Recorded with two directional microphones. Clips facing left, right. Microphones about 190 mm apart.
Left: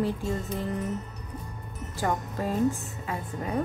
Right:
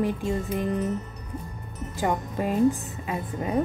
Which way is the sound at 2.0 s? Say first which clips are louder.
Right 3 dB; 15° right (ahead or behind).